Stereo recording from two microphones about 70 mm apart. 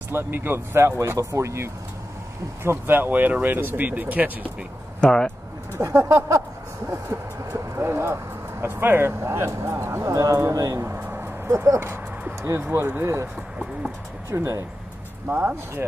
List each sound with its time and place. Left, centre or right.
0.1 s speech: right
5.0 s speech: centre
5.8 s speech: right
10.1 s speech: right
10.8 s vehicle: right
11.1 s a sound: right
11.5 s speech: right
14.3 s speech: right
15.2 s speech: right